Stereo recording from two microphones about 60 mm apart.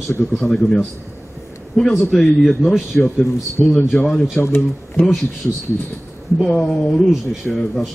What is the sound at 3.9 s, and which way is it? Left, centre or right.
Speech, left.